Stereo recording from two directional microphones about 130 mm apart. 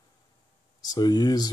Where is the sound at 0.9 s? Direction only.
30° left (ahead or behind).